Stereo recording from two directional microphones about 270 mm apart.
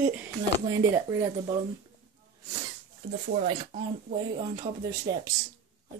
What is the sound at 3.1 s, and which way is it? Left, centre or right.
Speech, right.